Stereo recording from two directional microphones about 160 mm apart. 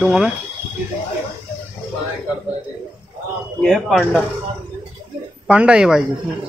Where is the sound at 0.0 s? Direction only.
5° right (ahead or behind).